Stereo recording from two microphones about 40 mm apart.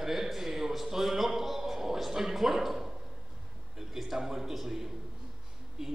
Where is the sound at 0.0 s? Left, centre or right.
Centre.